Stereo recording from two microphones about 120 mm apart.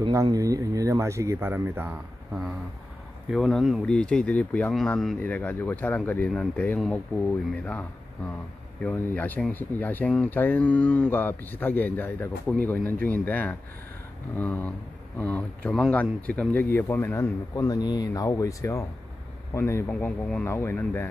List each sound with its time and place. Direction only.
0.1 s speech: 30° right (ahead or behind)
3.3 s speech: centre (ahead or behind)
8.8 s a man's voice: 15° left (ahead or behind)